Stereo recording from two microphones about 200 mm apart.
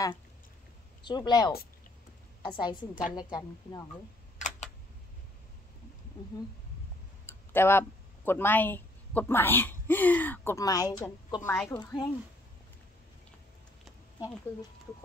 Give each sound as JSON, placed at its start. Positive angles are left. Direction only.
{"t": 1.0, "sound": "speech", "side_deg": 20}
{"t": 7.2, "sound": "tick-tock", "side_deg": 10}
{"t": 8.3, "sound": "a woman's voice", "side_deg": 10}